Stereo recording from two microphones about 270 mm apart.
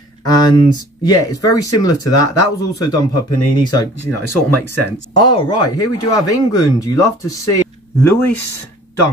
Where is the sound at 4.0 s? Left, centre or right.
Left.